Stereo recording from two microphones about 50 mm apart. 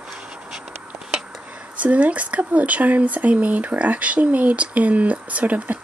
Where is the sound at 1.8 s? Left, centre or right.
Right.